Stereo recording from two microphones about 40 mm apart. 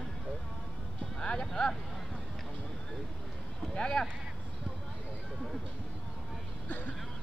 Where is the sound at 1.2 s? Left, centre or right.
Left.